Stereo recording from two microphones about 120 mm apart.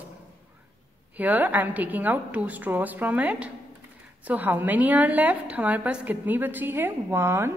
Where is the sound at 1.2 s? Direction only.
15° right (ahead or behind).